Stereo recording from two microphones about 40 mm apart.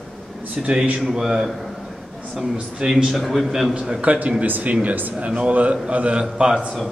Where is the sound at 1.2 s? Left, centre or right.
Centre.